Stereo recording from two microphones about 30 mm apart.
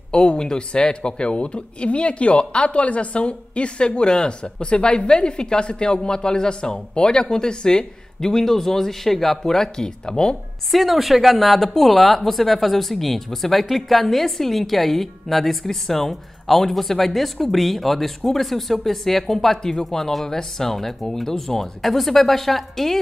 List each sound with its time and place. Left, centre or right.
0.1 s speech: left
8.3 s speech: centre
10.7 s speech: centre